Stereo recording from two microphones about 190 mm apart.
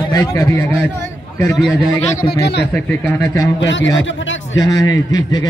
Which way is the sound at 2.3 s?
60° left (ahead or behind).